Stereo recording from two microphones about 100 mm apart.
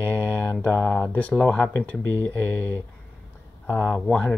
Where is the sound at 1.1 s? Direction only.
15° left (ahead or behind).